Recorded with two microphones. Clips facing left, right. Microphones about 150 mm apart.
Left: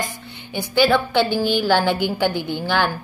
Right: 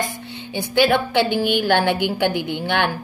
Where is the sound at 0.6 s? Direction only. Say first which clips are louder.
Even; 20° right (ahead or behind).